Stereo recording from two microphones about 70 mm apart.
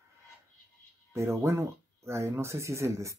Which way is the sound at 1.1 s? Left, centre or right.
Right.